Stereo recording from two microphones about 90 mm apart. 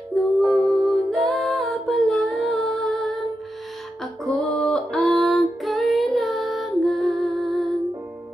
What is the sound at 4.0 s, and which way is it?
Female singing, 5° left (ahead or behind).